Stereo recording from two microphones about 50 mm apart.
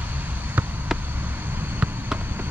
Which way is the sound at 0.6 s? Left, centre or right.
Right.